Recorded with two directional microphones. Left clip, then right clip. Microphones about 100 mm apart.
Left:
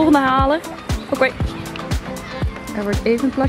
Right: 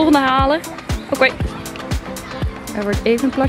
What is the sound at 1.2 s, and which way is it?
Speech, 15° right (ahead or behind).